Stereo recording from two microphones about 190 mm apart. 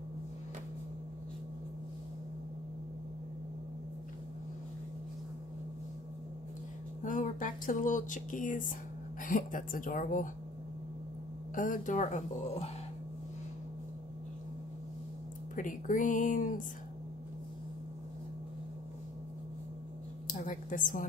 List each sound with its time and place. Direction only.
7.0 s a woman's voice: 45° left (ahead or behind)
11.5 s speech: 45° left (ahead or behind)
15.5 s a woman's voice: 45° left (ahead or behind)
20.2 s a sound: 45° left (ahead or behind)